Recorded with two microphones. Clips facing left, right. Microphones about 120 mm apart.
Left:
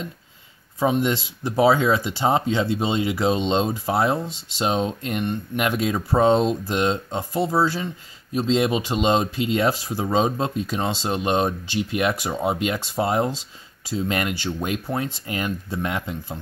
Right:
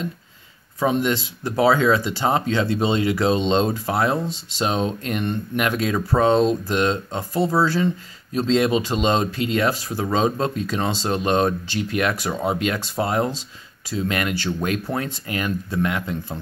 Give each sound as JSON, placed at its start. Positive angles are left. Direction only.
{"t": 0.7, "sound": "speech", "side_deg": 20}